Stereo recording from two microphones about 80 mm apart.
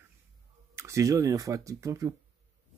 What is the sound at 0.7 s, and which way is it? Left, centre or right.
Speech, right.